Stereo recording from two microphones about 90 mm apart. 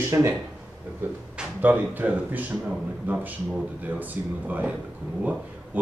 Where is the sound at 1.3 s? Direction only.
15° right (ahead or behind).